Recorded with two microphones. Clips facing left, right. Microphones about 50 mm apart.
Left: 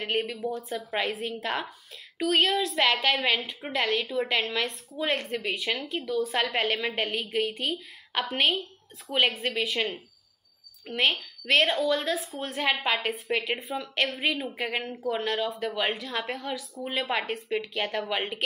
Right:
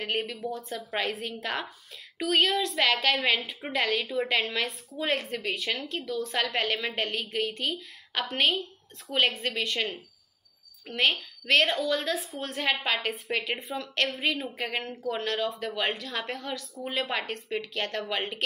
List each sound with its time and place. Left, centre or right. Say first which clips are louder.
0.0 s a woman's voice: left 2 dB; centre